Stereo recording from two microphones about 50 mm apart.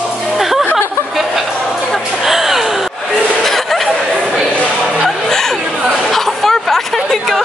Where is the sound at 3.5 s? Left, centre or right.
Centre.